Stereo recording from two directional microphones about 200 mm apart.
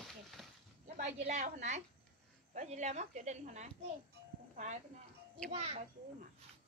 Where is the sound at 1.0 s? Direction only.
40° right (ahead or behind).